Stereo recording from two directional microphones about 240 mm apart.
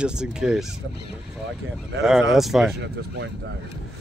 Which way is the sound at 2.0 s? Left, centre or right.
Centre.